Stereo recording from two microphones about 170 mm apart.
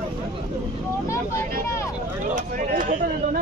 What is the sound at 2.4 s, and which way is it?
Speech, 50° right (ahead or behind).